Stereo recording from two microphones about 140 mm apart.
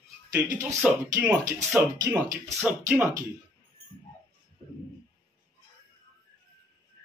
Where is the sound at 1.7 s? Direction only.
20° right (ahead or behind).